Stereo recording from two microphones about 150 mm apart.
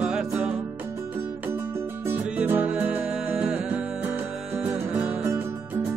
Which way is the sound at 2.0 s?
10° right (ahead or behind).